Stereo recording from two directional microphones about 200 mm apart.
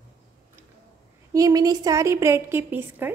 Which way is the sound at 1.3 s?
15° right (ahead or behind).